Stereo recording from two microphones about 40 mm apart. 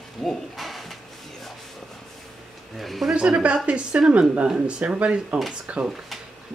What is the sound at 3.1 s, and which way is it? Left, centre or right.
A woman's voice, right.